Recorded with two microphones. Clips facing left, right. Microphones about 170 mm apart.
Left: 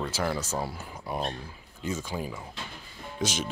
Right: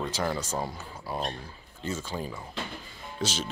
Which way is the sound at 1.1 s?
20° left (ahead or behind).